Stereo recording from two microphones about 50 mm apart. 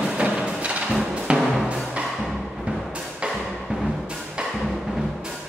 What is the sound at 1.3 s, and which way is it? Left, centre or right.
Timpani, right.